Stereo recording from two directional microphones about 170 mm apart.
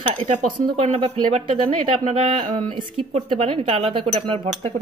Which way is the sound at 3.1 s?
40° right (ahead or behind).